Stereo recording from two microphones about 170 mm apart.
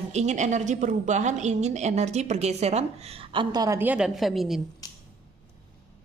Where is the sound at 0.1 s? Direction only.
40° right (ahead or behind); by 4.6 s centre (ahead or behind).